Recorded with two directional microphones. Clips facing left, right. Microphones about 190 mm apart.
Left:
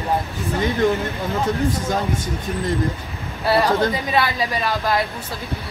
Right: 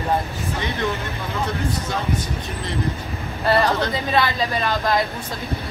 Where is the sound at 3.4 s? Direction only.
10° left (ahead or behind).